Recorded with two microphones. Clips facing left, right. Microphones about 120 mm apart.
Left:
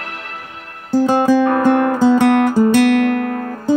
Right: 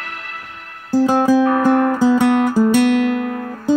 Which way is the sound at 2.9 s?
65° left (ahead or behind).